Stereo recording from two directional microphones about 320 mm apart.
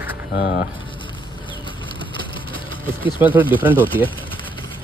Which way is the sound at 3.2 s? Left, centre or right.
Centre.